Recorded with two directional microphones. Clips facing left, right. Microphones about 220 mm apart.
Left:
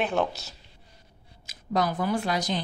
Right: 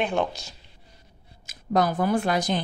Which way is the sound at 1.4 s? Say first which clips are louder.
Right 4 dB; 50° right (ahead or behind).